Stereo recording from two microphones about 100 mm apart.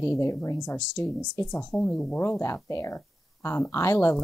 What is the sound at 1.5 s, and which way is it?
Speech, 10° left (ahead or behind).